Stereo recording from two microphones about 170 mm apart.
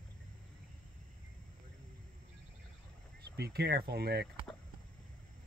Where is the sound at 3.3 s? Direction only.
70° right (ahead or behind).